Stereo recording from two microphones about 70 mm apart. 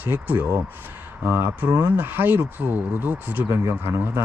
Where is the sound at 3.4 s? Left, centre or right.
Right.